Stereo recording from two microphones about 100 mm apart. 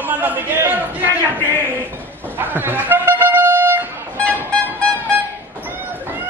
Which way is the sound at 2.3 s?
20° right (ahead or behind).